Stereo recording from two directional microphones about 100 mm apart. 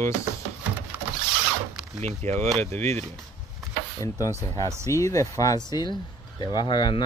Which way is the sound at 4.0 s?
35° left (ahead or behind).